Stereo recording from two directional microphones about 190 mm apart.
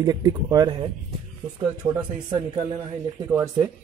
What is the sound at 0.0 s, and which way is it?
Speech, 20° right (ahead or behind).